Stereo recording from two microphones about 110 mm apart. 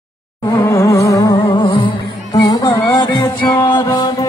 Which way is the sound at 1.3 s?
50° left (ahead or behind).